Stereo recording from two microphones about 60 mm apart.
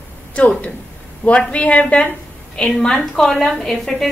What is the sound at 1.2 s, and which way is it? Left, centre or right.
A woman's voice, left.